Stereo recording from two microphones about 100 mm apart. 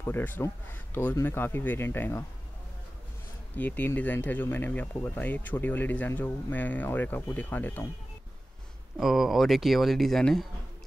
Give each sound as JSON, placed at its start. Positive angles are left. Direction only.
{"t": 0.0, "sound": "speech", "side_deg": 20}
{"t": 3.5, "sound": "speech", "side_deg": 15}
{"t": 8.9, "sound": "speech", "side_deg": -5}